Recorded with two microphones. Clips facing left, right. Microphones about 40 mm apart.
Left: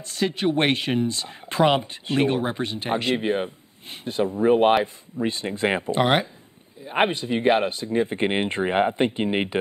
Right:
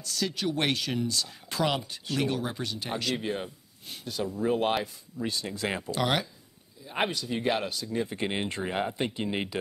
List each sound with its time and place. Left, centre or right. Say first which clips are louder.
0.0 s speech: left 7 dB; left